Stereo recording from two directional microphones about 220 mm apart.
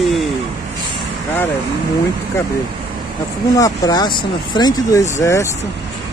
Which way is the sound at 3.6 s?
20° left (ahead or behind).